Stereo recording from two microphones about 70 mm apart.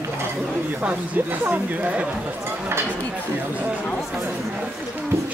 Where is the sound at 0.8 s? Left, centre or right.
Right.